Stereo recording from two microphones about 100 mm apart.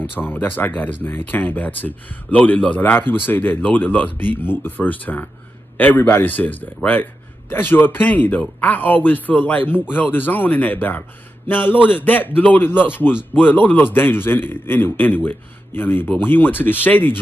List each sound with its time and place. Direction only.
0.2 s speech: 20° left (ahead or behind)